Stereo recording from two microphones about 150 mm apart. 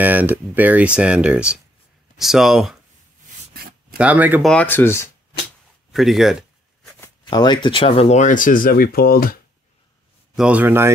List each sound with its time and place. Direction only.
0.0 s speech: 10° right (ahead or behind)
4.0 s speech: 10° right (ahead or behind)
4.5 s speech: 10° left (ahead or behind)
5.9 s speech: centre (ahead or behind)
7.2 s speech: 30° left (ahead or behind); by 9.4 s 80° left
10.3 s speech: 5° right (ahead or behind)